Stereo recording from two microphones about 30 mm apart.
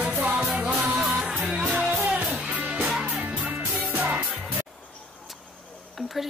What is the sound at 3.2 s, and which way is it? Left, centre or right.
Music, right.